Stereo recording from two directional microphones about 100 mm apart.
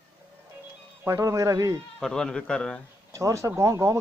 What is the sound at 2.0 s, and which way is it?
Speech, 5° left (ahead or behind).